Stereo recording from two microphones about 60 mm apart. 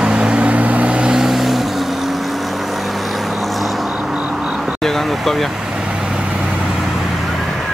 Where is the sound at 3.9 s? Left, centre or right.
Centre.